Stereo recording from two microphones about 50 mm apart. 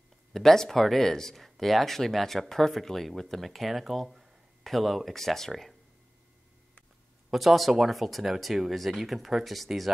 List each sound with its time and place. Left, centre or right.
0.3 s speech: centre
7.2 s speech: centre